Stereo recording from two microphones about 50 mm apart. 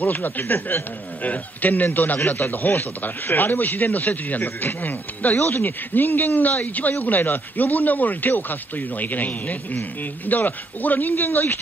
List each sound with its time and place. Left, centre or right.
0.0 s speech: left